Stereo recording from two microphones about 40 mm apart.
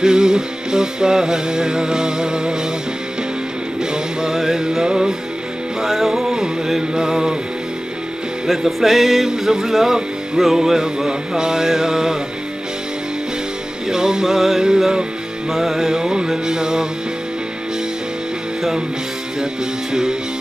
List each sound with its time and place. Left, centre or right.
0.0 s music: centre
3.8 s music: centre
6.3 s music: centre
8.5 s music: centre
13.8 s music: centre
15.5 s music: centre
19.9 s music: centre